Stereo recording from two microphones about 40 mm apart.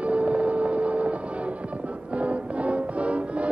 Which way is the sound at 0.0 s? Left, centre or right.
Right.